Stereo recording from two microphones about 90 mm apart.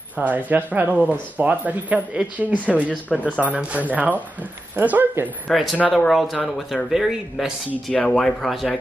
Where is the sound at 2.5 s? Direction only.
15° left (ahead or behind).